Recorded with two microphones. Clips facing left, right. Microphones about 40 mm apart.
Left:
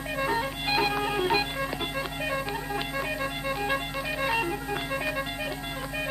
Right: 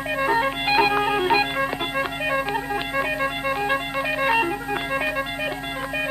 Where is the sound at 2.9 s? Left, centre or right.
Right.